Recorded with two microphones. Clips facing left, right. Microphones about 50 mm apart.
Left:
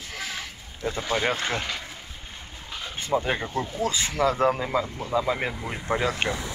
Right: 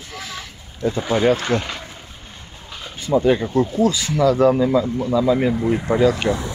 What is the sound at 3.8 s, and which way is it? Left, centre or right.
Speech, left.